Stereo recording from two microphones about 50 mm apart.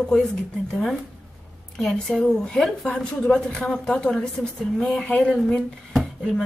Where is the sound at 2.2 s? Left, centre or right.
Centre.